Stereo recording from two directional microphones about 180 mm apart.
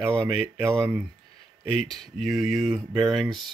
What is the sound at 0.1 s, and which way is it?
Speech, 15° right (ahead or behind).